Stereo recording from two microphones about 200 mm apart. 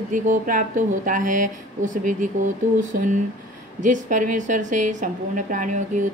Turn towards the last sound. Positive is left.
turn(degrees=-40)  # may be behind; listen again after turning